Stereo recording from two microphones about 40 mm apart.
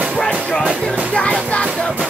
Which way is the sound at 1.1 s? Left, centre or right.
Left.